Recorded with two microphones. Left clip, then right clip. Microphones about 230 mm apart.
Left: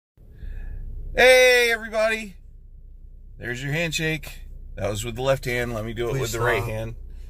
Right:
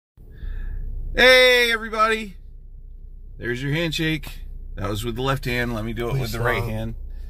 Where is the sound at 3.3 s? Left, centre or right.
Centre.